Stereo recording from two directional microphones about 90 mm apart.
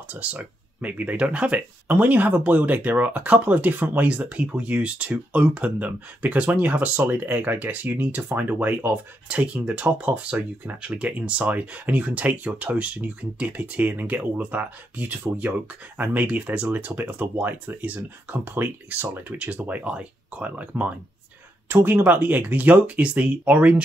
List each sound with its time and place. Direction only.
0.1 s speech: 15° right (ahead or behind)